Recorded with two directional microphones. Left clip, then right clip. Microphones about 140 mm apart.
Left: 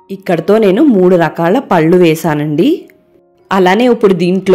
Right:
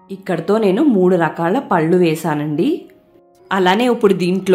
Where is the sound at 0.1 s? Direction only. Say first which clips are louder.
Left 7 dB; 40° left (ahead or behind).